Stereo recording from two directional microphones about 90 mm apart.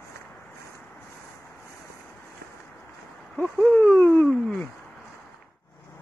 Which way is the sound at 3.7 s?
25° left (ahead or behind).